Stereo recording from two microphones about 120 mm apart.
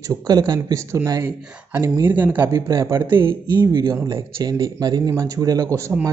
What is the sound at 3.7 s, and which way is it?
Speech, 35° right (ahead or behind).